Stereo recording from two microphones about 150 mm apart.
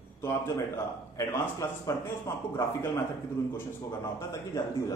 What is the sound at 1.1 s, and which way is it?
Speech, 15° left (ahead or behind).